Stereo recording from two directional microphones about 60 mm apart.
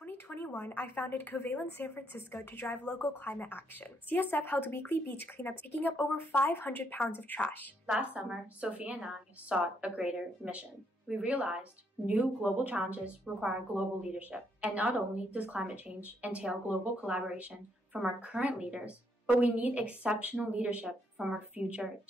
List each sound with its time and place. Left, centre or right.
0.0 s speech: left
8.0 s a woman's voice: right